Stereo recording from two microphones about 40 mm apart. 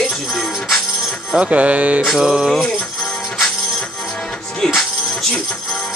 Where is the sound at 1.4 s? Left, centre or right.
Right.